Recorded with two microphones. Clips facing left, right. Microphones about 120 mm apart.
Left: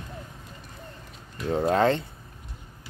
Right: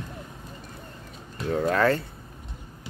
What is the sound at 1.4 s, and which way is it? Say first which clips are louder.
Speech: left 1 dB; 25° left (ahead or behind).